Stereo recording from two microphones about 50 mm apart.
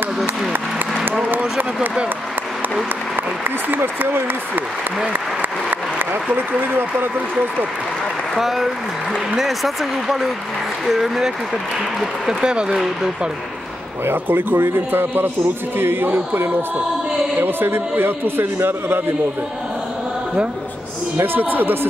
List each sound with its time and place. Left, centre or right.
3.7 s a man's voice: right
8.4 s speech: centre
14.0 s a man's voice: right
21.2 s a man's voice: right